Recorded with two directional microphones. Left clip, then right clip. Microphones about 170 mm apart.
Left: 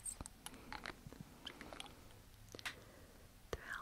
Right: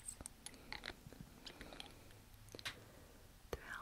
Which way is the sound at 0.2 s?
40° left (ahead or behind).